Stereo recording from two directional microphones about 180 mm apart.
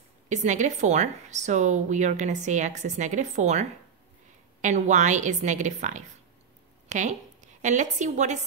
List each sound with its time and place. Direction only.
0.3 s a woman's voice: 40° right (ahead or behind)